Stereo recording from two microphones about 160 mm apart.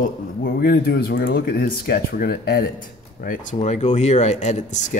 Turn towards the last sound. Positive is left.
turn(degrees=50)  # may be behind; listen again after turning